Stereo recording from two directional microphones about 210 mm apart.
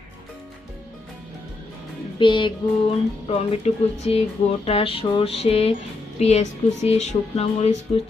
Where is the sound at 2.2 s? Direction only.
25° left (ahead or behind).